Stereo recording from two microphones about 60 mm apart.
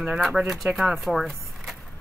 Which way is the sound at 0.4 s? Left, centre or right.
Centre.